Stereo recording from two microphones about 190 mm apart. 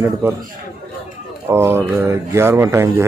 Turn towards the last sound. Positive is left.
turn(degrees=-15)  # may be behind; listen again after turning